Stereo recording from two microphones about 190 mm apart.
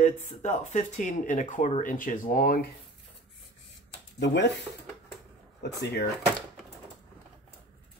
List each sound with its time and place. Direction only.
0.0 s speech: 40° left (ahead or behind)
4.2 s speech: 65° left (ahead or behind)
5.6 s speech: 65° left (ahead or behind)